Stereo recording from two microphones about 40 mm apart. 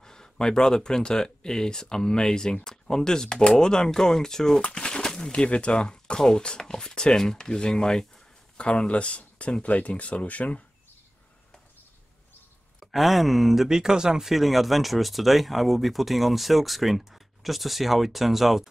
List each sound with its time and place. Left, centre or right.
0.0 s speech: centre; by 10.6 s left
12.8 s speech: centre
13.7 s speech: centre
14.3 s speech: centre